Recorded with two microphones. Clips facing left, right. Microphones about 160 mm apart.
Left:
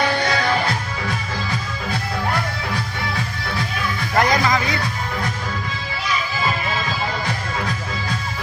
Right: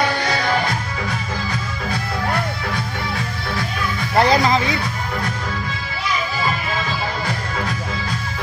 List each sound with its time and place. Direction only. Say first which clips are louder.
4.2 s music: right 3 dB; 30° right (ahead or behind)